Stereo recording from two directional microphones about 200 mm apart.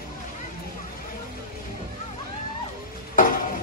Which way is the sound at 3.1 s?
45° left (ahead or behind).